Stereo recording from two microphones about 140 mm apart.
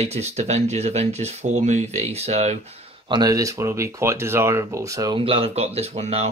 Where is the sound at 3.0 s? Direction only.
30° right (ahead or behind).